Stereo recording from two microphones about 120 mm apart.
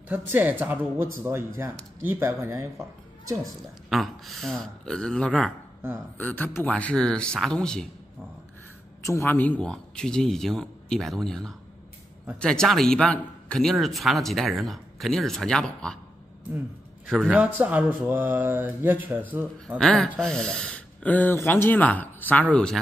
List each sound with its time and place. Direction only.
0.1 s speech: 15° right (ahead or behind)
3.9 s speech: centre (ahead or behind)
9.0 s speech: 20° left (ahead or behind); by 16.0 s 5° left (ahead or behind)
17.0 s speech: 5° left (ahead or behind)
17.3 s speech: 10° right (ahead or behind)
19.8 s speech: 5° left (ahead or behind)